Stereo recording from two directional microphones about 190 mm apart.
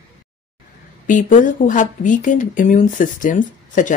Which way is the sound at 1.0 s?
45° left (ahead or behind).